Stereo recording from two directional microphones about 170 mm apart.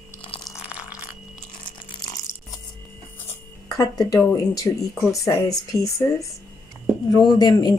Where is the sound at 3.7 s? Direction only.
20° left (ahead or behind).